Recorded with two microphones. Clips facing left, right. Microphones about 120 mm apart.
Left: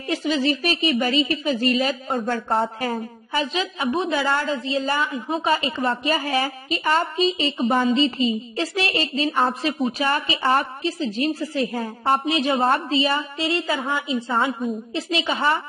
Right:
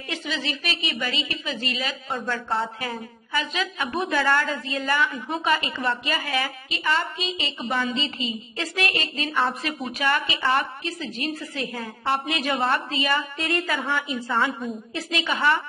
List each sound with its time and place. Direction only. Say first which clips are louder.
0.1 s a woman's voice: left 9 dB; 40° left (ahead or behind)
3.9 s a woman's voice: even; 20° left (ahead or behind)
4.6 s a woman's voice: left 2 dB; 30° left (ahead or behind)
14.1 s a woman's voice: left 5 dB; 25° left (ahead or behind)